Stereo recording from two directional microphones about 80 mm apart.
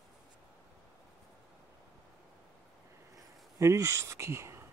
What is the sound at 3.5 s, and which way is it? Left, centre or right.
Speech, right.